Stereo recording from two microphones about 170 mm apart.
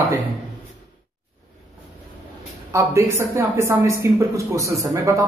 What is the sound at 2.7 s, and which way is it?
Speech, 15° right (ahead or behind).